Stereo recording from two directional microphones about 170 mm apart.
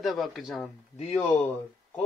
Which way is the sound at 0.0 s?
Centre (ahead or behind).